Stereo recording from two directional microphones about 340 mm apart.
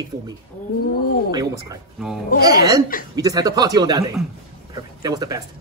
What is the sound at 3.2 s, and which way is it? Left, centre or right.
Speech, centre.